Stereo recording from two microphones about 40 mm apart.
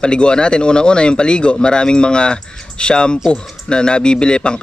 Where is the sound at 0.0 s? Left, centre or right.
Left.